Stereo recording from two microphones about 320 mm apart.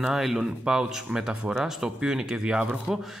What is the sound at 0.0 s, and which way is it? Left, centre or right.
Speech, centre.